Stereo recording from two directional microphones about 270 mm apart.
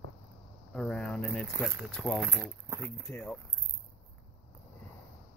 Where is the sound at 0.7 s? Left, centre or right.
Centre.